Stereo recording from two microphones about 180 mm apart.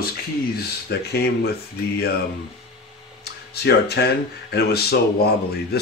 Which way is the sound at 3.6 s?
65° left (ahead or behind).